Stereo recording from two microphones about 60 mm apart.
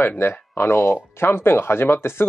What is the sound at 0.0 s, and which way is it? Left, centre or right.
Speech, left.